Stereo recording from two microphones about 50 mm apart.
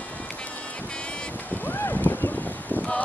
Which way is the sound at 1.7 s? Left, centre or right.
Left.